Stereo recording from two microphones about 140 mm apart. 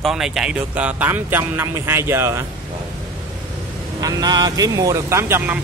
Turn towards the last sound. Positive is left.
turn(degrees=-15)  # may be behind; listen again after turning